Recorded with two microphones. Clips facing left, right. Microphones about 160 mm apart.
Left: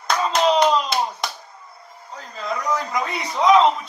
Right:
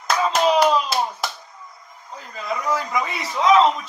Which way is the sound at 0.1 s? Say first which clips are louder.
Even; 5° right (ahead or behind).